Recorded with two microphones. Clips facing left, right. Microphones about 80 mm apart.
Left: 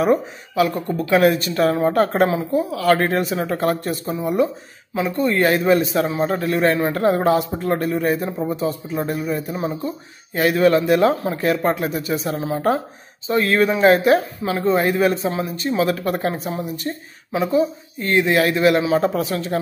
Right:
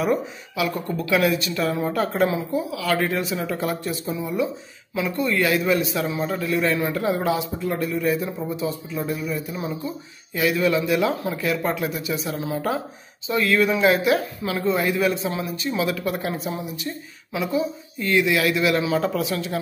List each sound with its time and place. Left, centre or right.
0.0 s speech: left
4.9 s speech: left